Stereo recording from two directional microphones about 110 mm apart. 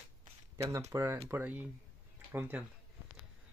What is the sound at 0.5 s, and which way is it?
Speech, 30° right (ahead or behind).